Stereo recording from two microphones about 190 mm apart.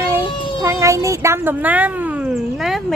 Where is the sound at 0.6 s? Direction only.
15° right (ahead or behind).